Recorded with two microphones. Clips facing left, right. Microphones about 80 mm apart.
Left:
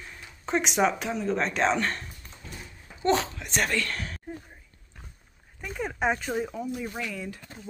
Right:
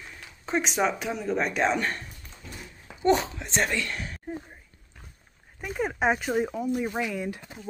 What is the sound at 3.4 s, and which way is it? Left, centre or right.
Speech, right.